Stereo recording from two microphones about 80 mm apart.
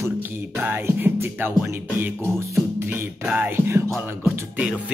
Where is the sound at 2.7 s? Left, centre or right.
Right.